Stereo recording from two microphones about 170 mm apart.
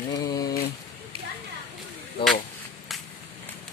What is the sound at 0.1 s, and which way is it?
Mantra, 20° left (ahead or behind).